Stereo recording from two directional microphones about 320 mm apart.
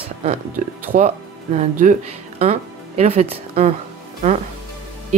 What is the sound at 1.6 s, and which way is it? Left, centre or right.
Speech, right.